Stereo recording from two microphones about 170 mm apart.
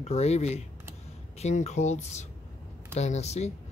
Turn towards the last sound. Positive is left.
turn(degrees=40)  # may be behind; listen again after turning